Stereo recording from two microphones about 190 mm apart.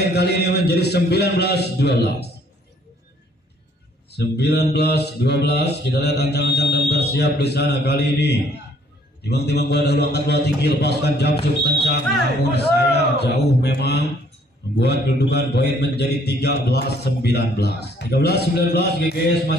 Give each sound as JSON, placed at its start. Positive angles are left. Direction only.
{"t": 0.0, "sound": "speech", "side_deg": 60}
{"t": 4.1, "sound": "speech", "side_deg": 60}